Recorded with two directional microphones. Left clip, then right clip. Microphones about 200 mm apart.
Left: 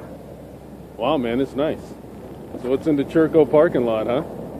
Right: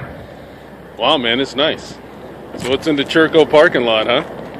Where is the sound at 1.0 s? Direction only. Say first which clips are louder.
Right 6 dB; 5° right (ahead or behind).